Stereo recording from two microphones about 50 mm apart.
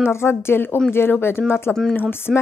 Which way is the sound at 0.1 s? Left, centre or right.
Left.